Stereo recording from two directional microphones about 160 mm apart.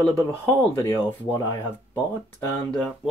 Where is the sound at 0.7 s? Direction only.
15° left (ahead or behind).